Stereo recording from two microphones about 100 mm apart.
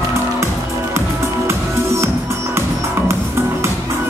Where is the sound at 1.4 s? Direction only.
25° right (ahead or behind).